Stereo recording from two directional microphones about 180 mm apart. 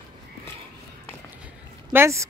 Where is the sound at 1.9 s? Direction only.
15° right (ahead or behind).